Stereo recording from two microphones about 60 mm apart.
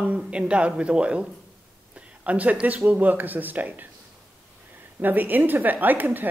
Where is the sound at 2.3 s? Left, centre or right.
Right.